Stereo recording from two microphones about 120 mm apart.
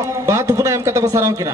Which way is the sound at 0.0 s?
30° right (ahead or behind).